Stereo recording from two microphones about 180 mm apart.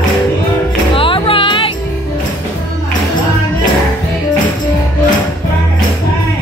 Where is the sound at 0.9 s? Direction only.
30° left (ahead or behind).